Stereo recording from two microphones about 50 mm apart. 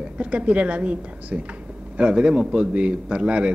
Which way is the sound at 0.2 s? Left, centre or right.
Right.